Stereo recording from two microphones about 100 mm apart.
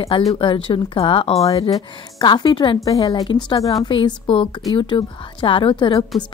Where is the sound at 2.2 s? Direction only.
45° left (ahead or behind).